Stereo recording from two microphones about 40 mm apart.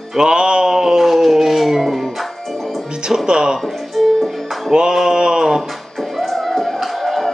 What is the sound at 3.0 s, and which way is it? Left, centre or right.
Speech, centre.